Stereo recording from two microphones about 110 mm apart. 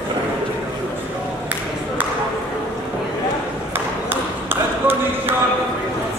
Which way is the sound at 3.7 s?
20° right (ahead or behind).